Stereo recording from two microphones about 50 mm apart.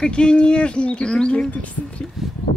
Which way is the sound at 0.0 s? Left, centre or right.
Centre.